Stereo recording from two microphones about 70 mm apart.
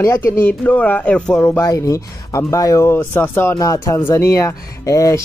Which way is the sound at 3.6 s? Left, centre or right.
Left.